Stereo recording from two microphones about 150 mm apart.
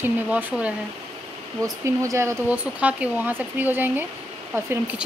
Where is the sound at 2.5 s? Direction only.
10° right (ahead or behind).